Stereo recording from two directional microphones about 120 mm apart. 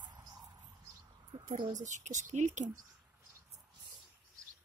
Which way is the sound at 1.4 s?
90° right.